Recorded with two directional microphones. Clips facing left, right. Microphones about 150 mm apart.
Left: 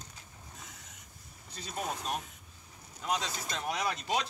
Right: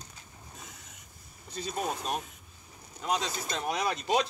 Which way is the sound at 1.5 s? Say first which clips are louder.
Right 4 dB; 20° right (ahead or behind).